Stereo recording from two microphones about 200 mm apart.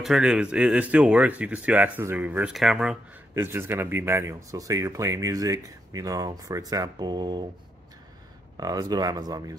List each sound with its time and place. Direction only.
0.0 s speech: 5° right (ahead or behind); by 7.4 s 20° right (ahead or behind)
8.5 s speech: 20° right (ahead or behind)